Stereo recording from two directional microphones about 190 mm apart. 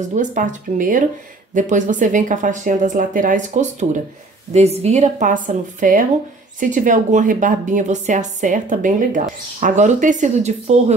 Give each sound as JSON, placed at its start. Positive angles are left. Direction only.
{"t": 0.1, "sound": "a woman's voice", "side_deg": -40}